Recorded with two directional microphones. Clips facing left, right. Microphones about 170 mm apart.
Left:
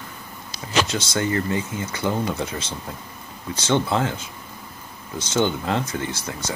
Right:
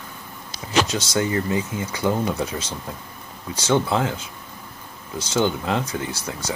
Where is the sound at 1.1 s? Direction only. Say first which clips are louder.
Right 1 dB; 15° right (ahead or behind).